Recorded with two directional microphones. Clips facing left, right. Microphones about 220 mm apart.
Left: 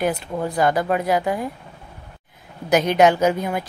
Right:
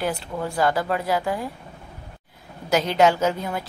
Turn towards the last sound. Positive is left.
turn(degrees=15)  # may be behind; listen again after turning